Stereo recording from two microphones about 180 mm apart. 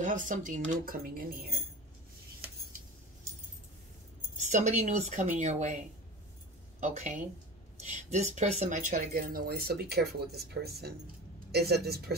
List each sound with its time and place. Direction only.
0.0 s speech: 45° right (ahead or behind)
4.4 s speech: 40° right (ahead or behind)
6.8 s speech: 45° right (ahead or behind); by 12.2 s 60° right (ahead or behind)